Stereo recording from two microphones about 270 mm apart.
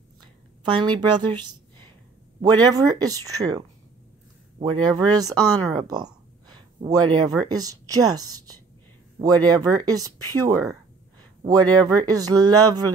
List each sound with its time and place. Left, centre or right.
0.7 s speech: centre
2.4 s speech: centre